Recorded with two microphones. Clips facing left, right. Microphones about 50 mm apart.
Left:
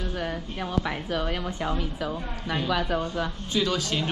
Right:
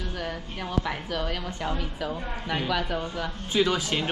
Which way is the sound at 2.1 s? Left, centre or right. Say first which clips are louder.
Even; centre.